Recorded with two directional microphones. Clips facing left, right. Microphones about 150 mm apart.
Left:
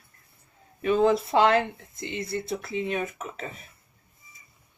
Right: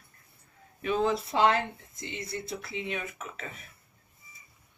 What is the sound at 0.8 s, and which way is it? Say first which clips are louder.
Speech: left 6 dB; 55° left (ahead or behind).